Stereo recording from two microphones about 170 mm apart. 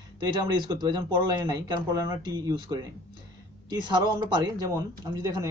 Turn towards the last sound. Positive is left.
turn(degrees=-20)  # may be behind; listen again after turning